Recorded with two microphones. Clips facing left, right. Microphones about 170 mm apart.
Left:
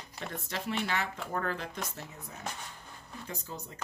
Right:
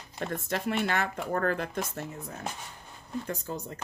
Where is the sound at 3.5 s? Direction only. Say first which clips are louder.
Right 6 dB; 60° right (ahead or behind).